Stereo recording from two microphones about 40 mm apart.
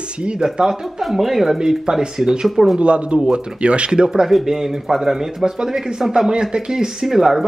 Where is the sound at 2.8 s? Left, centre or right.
Right.